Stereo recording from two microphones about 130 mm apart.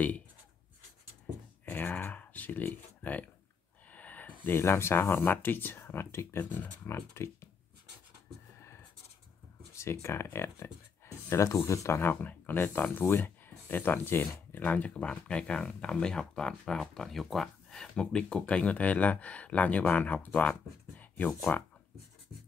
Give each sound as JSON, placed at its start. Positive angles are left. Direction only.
{"t": 1.7, "sound": "a sound", "side_deg": 15}
{"t": 4.5, "sound": "speech", "side_deg": 20}
{"t": 8.5, "sound": "scratch", "side_deg": 20}
{"t": 9.8, "sound": "speech", "side_deg": 20}